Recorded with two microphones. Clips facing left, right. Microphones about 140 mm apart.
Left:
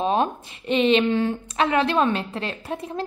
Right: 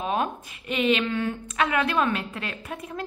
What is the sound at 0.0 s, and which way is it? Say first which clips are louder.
A woman's voice: left 5 dB; 30° left (ahead or behind).